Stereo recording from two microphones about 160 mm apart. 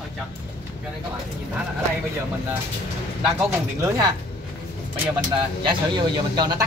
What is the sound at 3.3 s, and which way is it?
Speech, 15° right (ahead or behind).